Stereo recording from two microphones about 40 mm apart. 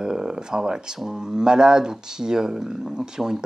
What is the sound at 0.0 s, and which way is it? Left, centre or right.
Speech, centre.